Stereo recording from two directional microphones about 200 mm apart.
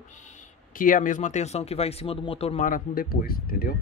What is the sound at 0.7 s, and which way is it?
Speech, 40° left (ahead or behind).